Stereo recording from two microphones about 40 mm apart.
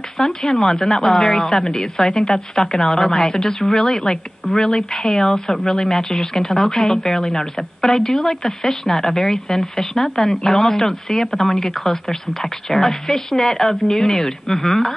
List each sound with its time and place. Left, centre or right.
0.2 s speech: centre